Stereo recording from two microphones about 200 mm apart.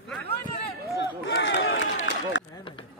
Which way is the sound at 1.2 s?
65° left (ahead or behind).